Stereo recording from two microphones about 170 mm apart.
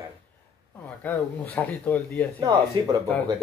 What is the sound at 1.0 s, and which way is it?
Speech, 10° left (ahead or behind).